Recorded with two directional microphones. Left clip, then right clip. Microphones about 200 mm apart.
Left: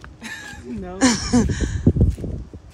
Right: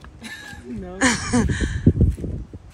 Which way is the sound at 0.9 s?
15° left (ahead or behind).